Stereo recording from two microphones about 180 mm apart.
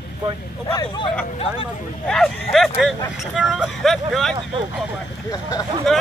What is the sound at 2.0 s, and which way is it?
Speech, 5° left (ahead or behind).